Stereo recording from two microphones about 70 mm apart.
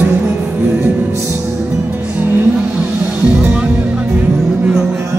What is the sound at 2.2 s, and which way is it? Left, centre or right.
Music, right.